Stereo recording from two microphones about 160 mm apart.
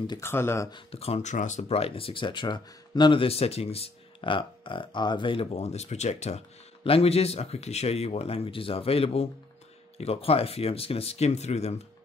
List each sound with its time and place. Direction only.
0.2 s speech: 15° left (ahead or behind)
0.7 s speech: 35° left (ahead or behind)